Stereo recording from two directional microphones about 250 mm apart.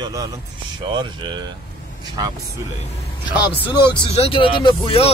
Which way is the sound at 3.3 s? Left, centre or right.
Centre.